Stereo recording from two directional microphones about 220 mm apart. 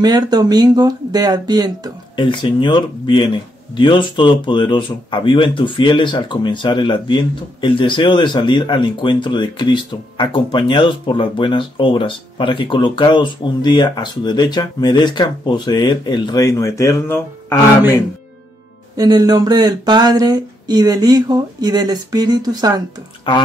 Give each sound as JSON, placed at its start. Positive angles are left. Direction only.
{"t": 0.0, "sound": "speech", "side_deg": -20}
{"t": 2.1, "sound": "speech", "side_deg": 20}
{"t": 18.9, "sound": "speech", "side_deg": -20}